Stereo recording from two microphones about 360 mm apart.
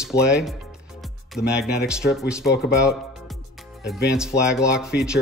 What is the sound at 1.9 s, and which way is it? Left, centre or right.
Speech, centre.